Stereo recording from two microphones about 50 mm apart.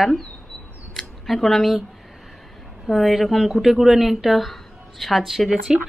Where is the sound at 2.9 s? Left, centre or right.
Centre.